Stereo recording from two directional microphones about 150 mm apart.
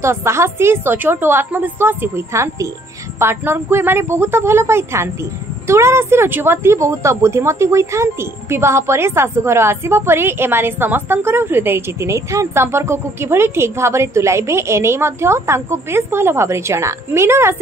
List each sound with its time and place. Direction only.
0.0 s a woman's voice: 20° right (ahead or behind)